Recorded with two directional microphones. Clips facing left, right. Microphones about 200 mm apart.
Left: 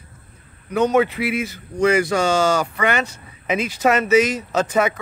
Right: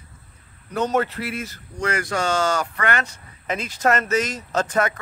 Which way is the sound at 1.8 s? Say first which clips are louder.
Left 7 dB; 10° left (ahead or behind).